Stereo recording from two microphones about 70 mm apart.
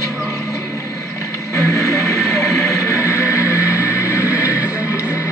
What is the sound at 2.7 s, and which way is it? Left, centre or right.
Music, left.